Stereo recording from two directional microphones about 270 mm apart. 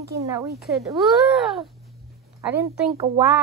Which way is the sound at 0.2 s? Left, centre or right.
Centre.